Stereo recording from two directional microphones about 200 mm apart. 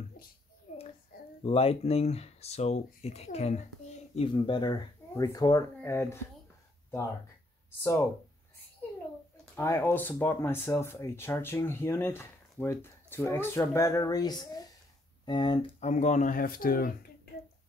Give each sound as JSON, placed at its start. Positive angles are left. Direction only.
{"t": 0.7, "sound": "child singing", "side_deg": 35}
{"t": 1.4, "sound": "speech", "side_deg": 30}
{"t": 9.6, "sound": "speech", "side_deg": 15}